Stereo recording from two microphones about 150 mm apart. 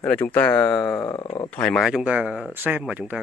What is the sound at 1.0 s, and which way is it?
Speech, 25° left (ahead or behind).